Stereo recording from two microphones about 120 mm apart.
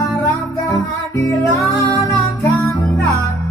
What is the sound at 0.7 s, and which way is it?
Music, 30° left (ahead or behind).